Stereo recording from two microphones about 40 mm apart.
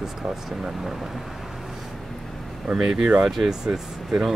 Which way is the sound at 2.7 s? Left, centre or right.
Centre.